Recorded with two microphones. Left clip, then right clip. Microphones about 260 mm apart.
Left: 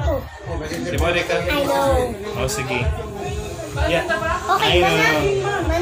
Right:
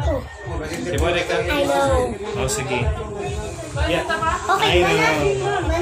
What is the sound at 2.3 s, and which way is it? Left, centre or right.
Speech, centre.